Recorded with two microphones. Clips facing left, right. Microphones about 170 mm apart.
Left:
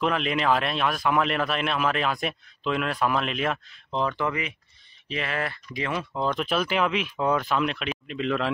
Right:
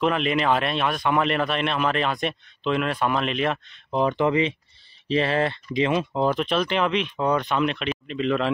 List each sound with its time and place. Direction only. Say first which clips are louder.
0.0 s speech: right 3 dB; centre (ahead or behind)
3.9 s speech: right 6 dB; 20° right (ahead or behind)
6.3 s speech: right 2 dB; 5° left (ahead or behind)